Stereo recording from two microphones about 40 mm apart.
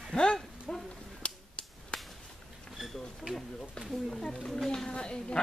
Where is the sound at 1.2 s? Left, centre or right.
Left.